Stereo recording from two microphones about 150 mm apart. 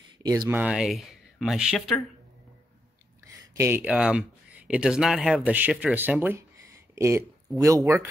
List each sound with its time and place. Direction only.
0.2 s speech: 25° right (ahead or behind)
0.5 s speech: 10° right (ahead or behind)
3.5 s speech: 15° right (ahead or behind)